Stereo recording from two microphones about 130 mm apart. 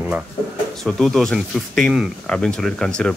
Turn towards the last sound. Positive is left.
turn(degrees=5)  # may be behind; listen again after turning